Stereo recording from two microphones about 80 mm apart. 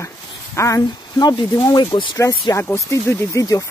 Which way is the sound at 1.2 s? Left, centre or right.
Left.